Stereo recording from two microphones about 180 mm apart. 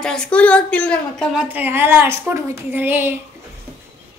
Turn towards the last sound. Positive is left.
turn(degrees=-10)  # may be behind; listen again after turning